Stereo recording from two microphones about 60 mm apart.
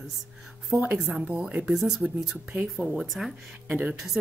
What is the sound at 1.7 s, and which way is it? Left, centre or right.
A woman's voice, centre.